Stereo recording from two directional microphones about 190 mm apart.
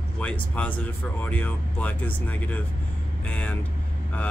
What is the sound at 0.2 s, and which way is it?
Speech, 5° left (ahead or behind).